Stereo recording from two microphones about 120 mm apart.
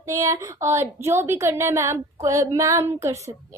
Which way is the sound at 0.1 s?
25° right (ahead or behind).